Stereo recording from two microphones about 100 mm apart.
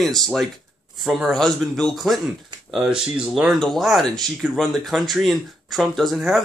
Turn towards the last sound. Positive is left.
turn(degrees=0)  # may be behind; listen again after turning